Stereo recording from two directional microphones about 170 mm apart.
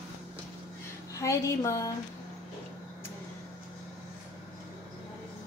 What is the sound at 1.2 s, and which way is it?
Speech, 20° left (ahead or behind).